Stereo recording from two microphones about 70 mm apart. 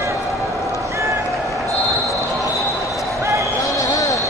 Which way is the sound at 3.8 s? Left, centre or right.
Left.